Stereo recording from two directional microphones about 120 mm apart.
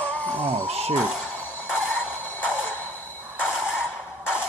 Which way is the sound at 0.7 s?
60° right (ahead or behind).